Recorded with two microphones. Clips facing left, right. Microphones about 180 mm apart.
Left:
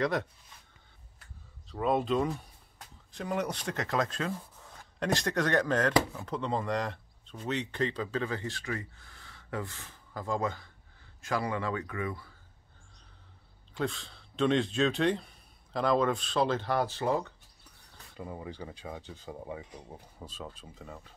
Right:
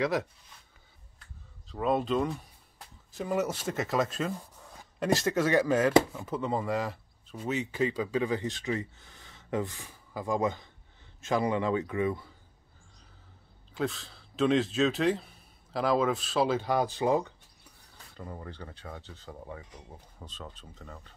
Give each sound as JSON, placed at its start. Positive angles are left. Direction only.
{"t": 0.0, "sound": "speech", "side_deg": 0}
{"t": 1.7, "sound": "speech", "side_deg": 0}
{"t": 13.7, "sound": "speech", "side_deg": 0}
{"t": 18.1, "sound": "speech", "side_deg": 5}